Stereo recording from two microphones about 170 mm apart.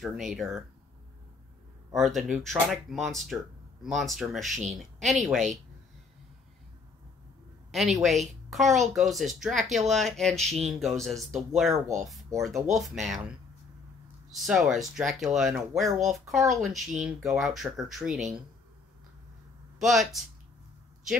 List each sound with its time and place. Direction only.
0.0 s speech: centre (ahead or behind)
2.0 s speech: centre (ahead or behind)
7.7 s speech: centre (ahead or behind)
14.3 s speech: centre (ahead or behind)
19.8 s speech: centre (ahead or behind)